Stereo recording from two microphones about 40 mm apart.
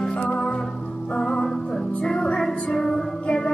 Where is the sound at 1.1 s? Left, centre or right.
Left.